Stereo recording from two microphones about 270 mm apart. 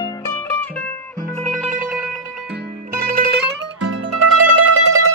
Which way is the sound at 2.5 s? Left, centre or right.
Right.